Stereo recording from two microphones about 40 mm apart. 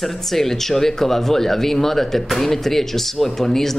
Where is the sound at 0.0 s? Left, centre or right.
Centre.